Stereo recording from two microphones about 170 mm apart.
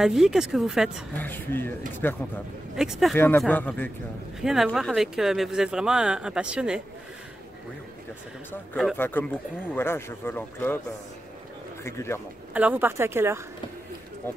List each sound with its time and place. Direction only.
0.0 s speech: centre (ahead or behind)
1.1 s speech: 10° left (ahead or behind)
2.7 s speech: 5° right (ahead or behind)
3.2 s speech: 10° left (ahead or behind)
4.4 s speech: centre (ahead or behind)
8.9 s speech: 10° left (ahead or behind)
11.8 s speech: 15° left (ahead or behind)
12.5 s a woman's voice: 10° right (ahead or behind)